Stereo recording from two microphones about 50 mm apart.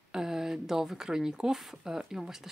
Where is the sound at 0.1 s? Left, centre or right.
Centre.